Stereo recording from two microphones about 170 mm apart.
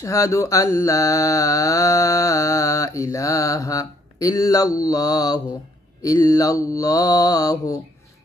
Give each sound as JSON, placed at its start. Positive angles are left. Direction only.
{"t": 0.0, "sound": "mantra", "side_deg": 20}